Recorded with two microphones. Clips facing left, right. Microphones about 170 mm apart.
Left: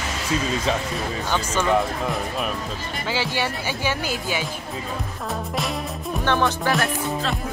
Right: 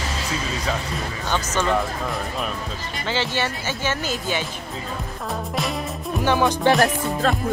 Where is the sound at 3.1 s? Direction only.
10° left (ahead or behind).